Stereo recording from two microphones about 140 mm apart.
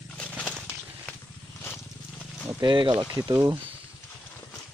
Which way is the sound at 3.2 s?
20° right (ahead or behind).